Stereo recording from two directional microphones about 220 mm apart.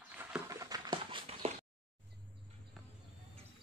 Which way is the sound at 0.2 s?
10° right (ahead or behind).